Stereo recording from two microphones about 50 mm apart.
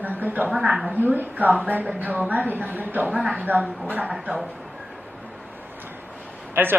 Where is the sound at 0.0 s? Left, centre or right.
Right.